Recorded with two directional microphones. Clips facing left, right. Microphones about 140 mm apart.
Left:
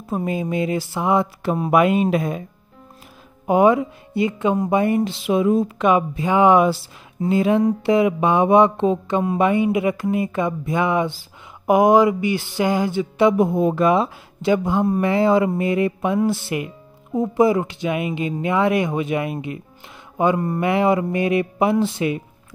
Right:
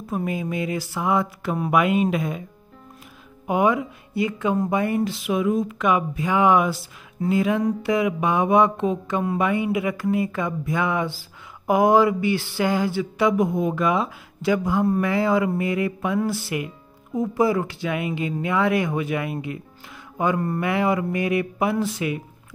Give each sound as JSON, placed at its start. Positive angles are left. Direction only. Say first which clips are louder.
{"t": 0.1, "sound": "speech", "louder": "left 3 dB", "side_deg": 25}
{"t": 3.4, "sound": "speech", "louder": "left 5 dB", "side_deg": 35}